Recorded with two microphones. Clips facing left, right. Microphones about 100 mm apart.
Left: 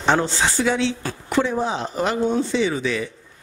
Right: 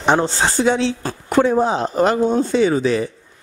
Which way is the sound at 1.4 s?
45° right (ahead or behind).